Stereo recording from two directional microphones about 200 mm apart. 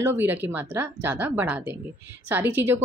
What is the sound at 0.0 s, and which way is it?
Speech, 10° right (ahead or behind).